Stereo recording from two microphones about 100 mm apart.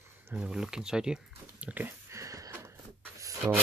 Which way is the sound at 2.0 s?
30° right (ahead or behind).